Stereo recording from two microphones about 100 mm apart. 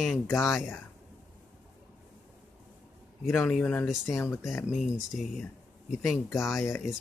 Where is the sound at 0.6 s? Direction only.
25° left (ahead or behind).